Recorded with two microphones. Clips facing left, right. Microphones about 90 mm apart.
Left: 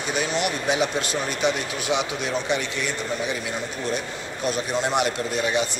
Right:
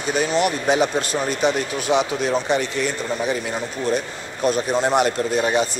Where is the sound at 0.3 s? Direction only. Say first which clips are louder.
Right 6 dB; 40° right (ahead or behind).